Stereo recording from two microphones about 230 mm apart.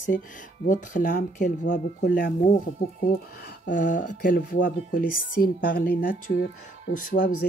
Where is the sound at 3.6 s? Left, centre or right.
Left.